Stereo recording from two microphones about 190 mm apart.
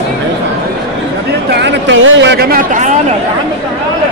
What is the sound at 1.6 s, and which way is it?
Speech, 80° right.